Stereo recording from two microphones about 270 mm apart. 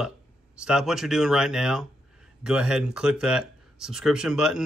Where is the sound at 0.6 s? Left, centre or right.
Centre.